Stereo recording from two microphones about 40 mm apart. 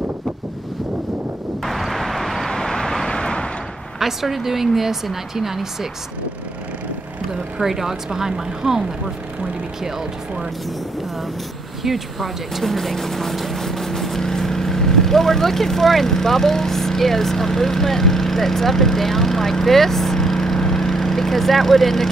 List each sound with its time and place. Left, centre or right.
1.6 s vehicle: centre; by 3.4 s left
4.0 s speech: centre
7.5 s speech: centre
11.8 s speech: centre